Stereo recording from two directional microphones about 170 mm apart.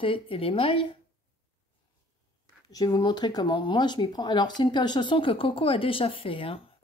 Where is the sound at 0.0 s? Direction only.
30° left (ahead or behind).